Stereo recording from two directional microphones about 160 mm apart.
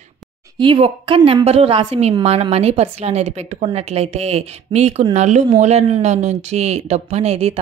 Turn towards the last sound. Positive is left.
turn(degrees=-40)  # may be behind; listen again after turning